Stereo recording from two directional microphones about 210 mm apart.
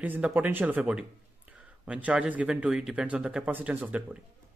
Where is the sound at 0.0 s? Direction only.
10° right (ahead or behind).